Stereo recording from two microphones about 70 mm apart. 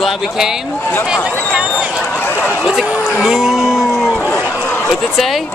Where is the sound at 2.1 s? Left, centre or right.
Left.